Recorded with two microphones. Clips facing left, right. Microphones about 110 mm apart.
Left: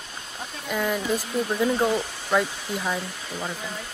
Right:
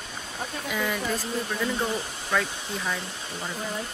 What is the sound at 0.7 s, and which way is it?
Speech, 5° left (ahead or behind).